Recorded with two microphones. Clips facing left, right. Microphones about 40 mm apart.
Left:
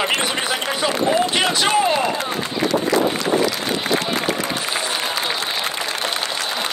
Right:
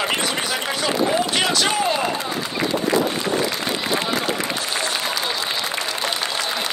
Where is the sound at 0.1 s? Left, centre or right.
Left.